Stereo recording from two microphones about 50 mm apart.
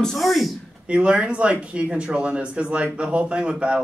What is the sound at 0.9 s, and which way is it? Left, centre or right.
Speech, right.